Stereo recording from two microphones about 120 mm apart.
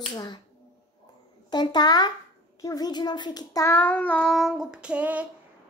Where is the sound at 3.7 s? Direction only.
15° left (ahead or behind); by 5.3 s 10° right (ahead or behind).